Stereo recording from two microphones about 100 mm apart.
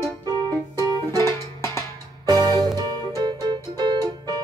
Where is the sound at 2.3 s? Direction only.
40° right (ahead or behind).